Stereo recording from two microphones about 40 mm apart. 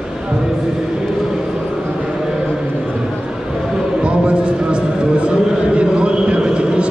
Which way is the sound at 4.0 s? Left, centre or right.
Right.